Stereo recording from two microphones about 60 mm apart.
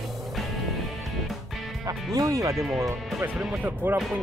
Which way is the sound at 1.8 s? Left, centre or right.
Right.